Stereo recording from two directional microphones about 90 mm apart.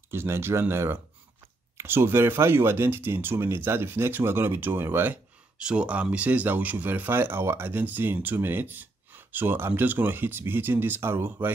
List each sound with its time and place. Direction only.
0.1 s speech: 25° right (ahead or behind)
5.6 s speech: 10° right (ahead or behind)